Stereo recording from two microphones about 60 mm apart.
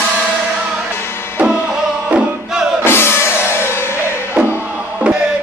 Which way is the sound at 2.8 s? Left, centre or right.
Left.